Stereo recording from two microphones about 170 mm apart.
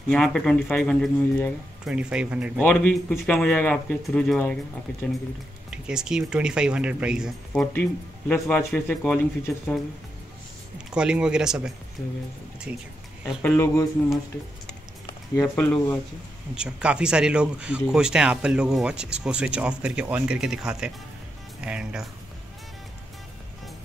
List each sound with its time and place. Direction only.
0.1 s speech: centre (ahead or behind)
1.9 s speech: 5° right (ahead or behind)
2.6 s speech: 10° left (ahead or behind)
5.7 s speech: 5° right (ahead or behind)
8.3 s speech: 10° left (ahead or behind)
10.9 s speech: 5° right (ahead or behind)
13.4 s speech: 10° left (ahead or behind)
15.0 s a sound: 20° left (ahead or behind)
15.5 s speech: 10° left (ahead or behind)
16.5 s speech: 5° right (ahead or behind)